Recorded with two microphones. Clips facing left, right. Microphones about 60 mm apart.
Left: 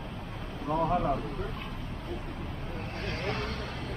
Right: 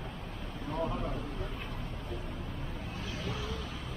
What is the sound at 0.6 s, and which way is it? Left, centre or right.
Vehicle, left.